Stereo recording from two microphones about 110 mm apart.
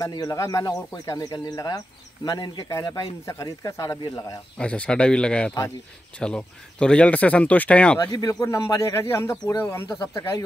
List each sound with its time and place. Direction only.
0.0 s speech: 35° left (ahead or behind)
4.6 s speech: 10° left (ahead or behind)
8.0 s speech: 35° left (ahead or behind)